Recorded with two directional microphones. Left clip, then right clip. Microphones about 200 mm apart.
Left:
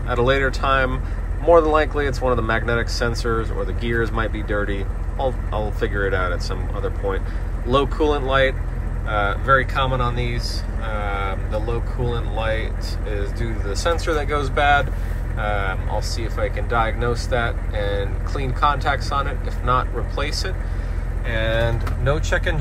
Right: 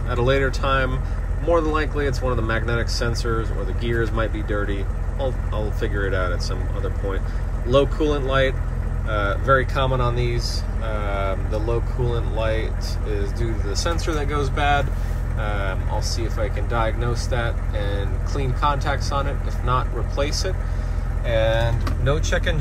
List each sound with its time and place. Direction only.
0.1 s speech: 10° right (ahead or behind)
21.5 s speech: 5° right (ahead or behind)